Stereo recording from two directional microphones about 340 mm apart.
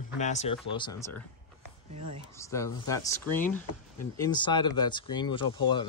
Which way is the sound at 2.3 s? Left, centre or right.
Centre.